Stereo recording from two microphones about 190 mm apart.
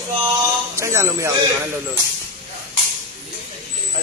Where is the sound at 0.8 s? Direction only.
15° right (ahead or behind).